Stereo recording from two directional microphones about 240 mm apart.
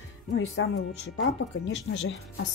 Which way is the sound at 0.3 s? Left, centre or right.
Left.